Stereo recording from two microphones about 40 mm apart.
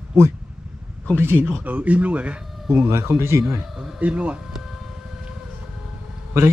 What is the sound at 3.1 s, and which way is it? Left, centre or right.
Speech, right.